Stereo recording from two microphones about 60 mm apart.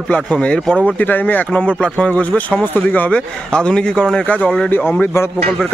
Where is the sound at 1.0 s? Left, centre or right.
Left.